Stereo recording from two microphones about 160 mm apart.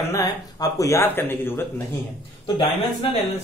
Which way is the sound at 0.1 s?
20° left (ahead or behind).